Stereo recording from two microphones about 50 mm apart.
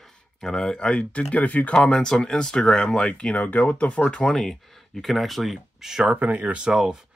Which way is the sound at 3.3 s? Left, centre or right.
Left.